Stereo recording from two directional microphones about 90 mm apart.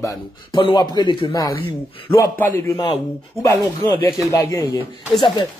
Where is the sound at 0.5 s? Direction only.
60° left (ahead or behind).